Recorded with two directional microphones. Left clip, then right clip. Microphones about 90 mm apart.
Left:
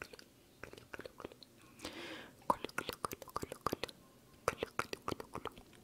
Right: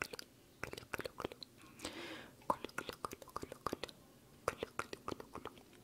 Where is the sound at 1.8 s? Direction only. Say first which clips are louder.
Left 1 dB; 5° left (ahead or behind).